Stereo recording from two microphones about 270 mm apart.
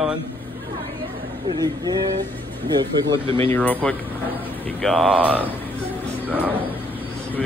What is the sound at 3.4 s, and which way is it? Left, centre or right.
Speech, centre.